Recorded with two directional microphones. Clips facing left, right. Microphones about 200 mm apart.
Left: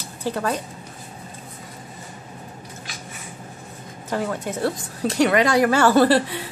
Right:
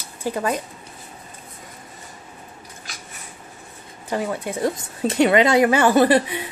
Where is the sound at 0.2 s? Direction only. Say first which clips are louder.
Right 1 dB; 10° right (ahead or behind).